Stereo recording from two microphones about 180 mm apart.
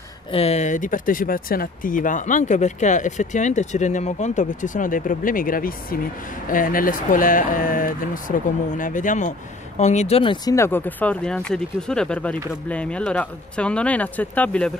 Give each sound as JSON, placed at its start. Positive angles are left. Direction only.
{"t": 0.3, "sound": "speech", "side_deg": 35}